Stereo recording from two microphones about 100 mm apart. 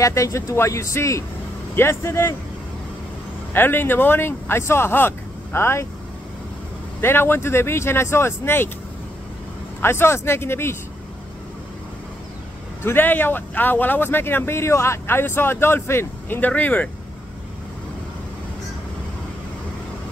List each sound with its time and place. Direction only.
0.0 s speech: 30° left (ahead or behind)
3.5 s speech: 20° left (ahead or behind)
7.0 s speech: 25° left (ahead or behind)
9.8 s speech: 25° left (ahead or behind)
12.8 s speech: 20° left (ahead or behind)